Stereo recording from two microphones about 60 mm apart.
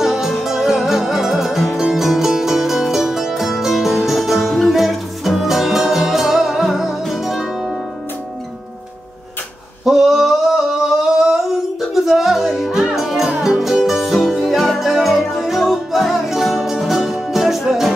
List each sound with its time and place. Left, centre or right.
0.0 s music: centre
9.8 s singing: centre
13.4 s music: centre